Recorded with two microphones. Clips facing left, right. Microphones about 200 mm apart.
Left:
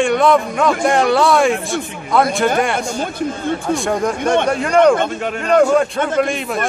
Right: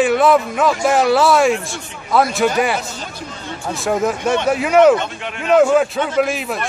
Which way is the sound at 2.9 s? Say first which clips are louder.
Left 10 dB; 50° left (ahead or behind).